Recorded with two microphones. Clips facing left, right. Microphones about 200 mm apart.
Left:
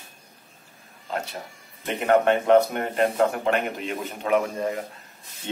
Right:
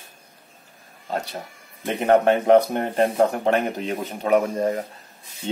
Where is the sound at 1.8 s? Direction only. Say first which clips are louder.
Right 2 dB; 35° right (ahead or behind).